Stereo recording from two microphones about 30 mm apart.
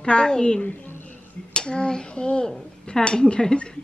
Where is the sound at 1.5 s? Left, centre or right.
Left.